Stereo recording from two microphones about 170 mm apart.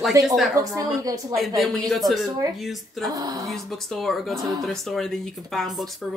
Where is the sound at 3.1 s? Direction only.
20° right (ahead or behind).